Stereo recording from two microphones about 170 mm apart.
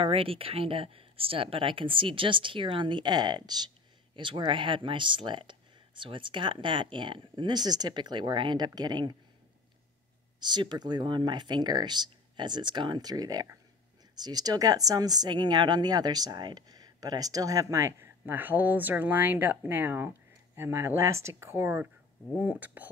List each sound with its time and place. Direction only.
0.0 s speech: 35° right (ahead or behind)
10.4 s speech: 25° right (ahead or behind); by 22.8 s 10° right (ahead or behind)